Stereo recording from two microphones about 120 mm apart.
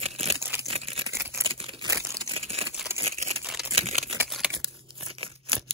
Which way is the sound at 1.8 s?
25° right (ahead or behind).